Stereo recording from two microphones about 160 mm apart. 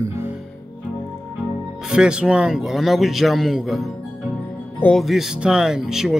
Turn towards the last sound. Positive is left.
turn(degrees=-5)  # may be behind; listen again after turning